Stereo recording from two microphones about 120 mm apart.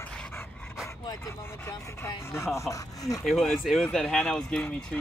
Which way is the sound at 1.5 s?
20° left (ahead or behind).